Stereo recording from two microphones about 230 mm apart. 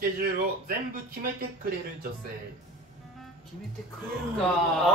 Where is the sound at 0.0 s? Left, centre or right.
Right.